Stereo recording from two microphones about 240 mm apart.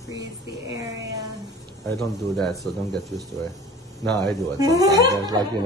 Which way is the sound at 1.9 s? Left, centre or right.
Centre.